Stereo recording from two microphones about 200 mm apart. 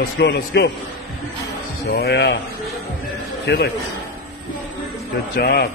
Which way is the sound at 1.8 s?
55° left (ahead or behind).